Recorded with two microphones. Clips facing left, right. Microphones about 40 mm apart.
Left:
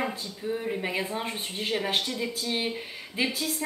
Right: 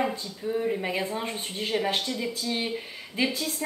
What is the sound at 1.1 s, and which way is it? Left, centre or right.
Speech, centre.